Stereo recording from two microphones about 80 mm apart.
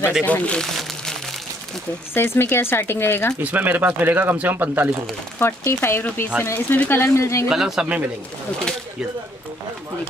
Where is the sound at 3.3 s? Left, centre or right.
Right.